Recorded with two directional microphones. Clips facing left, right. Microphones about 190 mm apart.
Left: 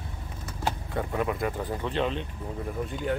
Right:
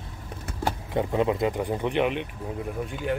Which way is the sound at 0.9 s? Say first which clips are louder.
Right 6 dB; 20° right (ahead or behind).